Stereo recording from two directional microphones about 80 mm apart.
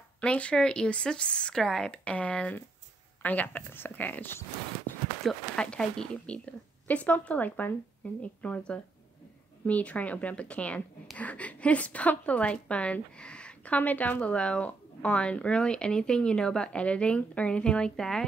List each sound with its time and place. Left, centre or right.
0.2 s a woman's voice: centre
2.0 s a woman's voice: centre
5.2 s a woman's voice: centre